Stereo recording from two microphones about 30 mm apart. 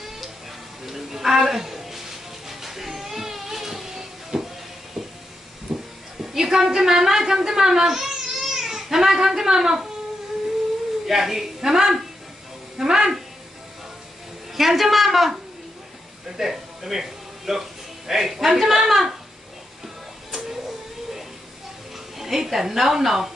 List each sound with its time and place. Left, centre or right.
0.8 s music: centre
2.9 s a sound: centre
5.0 s hiss: centre
5.7 s a sound: centre
6.2 s a woman's voice: centre
11.1 s a woman's voice: centre
14.5 s a woman's voice: centre
16.3 s speech: centre
22.2 s a woman's voice: centre